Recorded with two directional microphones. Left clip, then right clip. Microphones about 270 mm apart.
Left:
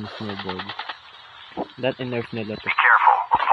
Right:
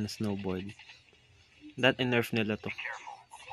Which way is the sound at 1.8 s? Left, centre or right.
Centre.